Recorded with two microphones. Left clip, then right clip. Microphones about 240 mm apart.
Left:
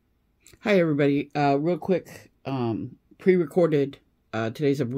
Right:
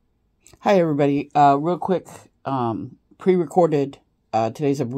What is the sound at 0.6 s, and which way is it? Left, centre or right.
Speech, centre.